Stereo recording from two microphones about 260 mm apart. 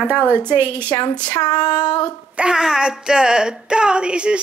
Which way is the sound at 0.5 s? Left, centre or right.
Centre.